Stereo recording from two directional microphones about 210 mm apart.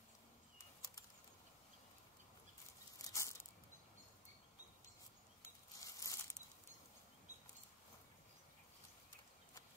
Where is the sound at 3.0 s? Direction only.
15° left (ahead or behind).